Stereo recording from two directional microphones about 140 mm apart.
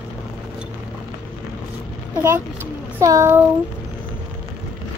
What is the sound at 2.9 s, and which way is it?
Speech, 20° right (ahead or behind).